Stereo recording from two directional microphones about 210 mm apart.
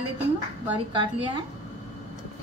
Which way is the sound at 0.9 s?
20° right (ahead or behind).